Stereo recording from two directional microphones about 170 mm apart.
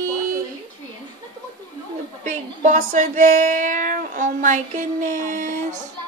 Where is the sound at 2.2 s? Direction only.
45° right (ahead or behind).